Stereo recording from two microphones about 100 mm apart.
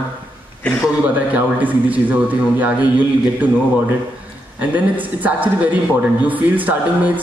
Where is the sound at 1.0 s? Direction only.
15° right (ahead or behind).